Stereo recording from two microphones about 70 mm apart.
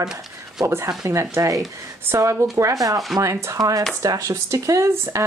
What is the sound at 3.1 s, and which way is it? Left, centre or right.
Speech, right.